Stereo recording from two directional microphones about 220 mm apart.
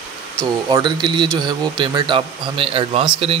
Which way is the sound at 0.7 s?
20° right (ahead or behind).